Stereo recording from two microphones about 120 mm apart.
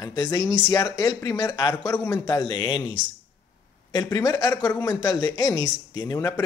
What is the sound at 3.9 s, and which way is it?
Speech, 30° left (ahead or behind).